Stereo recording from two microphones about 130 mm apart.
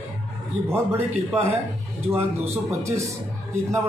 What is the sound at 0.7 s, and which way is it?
Speech, 15° right (ahead or behind).